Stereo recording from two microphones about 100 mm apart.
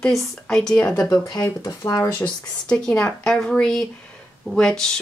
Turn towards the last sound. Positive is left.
turn(degrees=10)  # may be behind; listen again after turning